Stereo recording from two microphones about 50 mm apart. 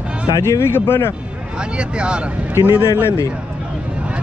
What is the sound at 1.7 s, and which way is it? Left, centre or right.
Speech, centre.